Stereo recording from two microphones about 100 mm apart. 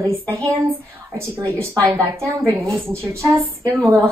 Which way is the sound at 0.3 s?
30° right (ahead or behind).